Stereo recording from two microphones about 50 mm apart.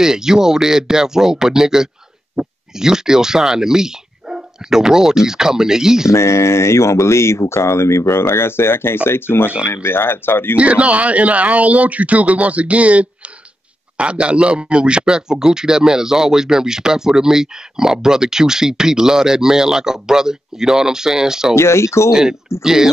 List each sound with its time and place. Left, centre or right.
0.0 s speech: centre
6.1 s speech: left
10.6 s speech: right
21.5 s speech: left
22.1 s speech: centre